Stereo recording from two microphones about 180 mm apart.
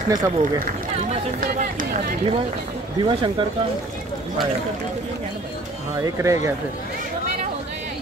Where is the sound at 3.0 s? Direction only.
25° right (ahead or behind).